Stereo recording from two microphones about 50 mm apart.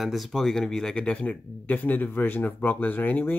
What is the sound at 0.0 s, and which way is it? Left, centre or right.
Speech, centre.